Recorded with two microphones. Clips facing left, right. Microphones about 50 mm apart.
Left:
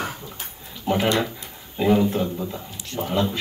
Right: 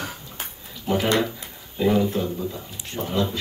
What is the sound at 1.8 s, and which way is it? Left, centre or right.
Speech, centre.